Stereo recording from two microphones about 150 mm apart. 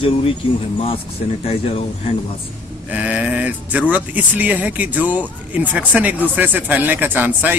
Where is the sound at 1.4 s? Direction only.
40° left (ahead or behind).